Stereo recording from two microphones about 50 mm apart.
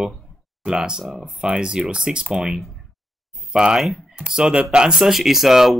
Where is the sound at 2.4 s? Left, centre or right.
Centre.